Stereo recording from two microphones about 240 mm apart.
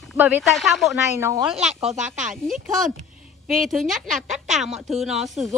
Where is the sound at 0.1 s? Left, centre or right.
Centre.